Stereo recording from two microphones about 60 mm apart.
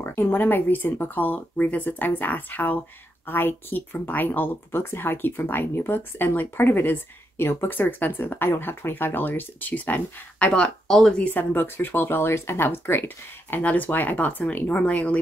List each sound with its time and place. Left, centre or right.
0.0 s speech: left
10.5 s speech: centre
11.3 s speech: left
13.6 s speech: left